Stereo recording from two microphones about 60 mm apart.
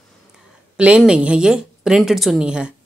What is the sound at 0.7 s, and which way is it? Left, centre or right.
Speech, centre.